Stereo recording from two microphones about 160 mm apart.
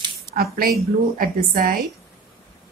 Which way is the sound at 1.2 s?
60° right (ahead or behind).